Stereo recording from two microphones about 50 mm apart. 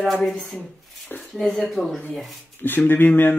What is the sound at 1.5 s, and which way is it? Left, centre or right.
Speech, centre.